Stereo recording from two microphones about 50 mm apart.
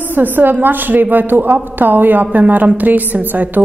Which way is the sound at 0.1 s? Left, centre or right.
Right.